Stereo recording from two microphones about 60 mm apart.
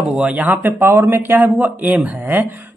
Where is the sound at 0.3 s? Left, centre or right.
Right.